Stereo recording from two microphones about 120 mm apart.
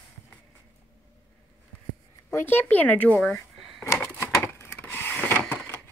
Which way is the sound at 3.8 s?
25° left (ahead or behind).